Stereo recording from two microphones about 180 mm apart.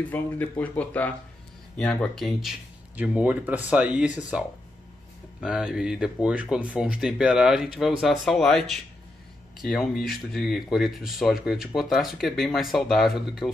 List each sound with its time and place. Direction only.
0.1 s speech: 10° left (ahead or behind)